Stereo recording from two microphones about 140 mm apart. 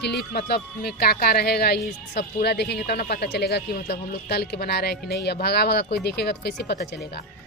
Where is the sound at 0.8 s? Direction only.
90° left.